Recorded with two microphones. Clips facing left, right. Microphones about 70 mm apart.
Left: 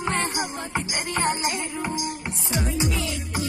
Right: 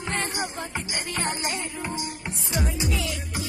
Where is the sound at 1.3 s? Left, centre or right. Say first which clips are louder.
Left 5 dB; centre.